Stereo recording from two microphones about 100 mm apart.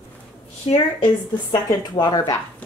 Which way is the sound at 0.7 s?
60° left (ahead or behind).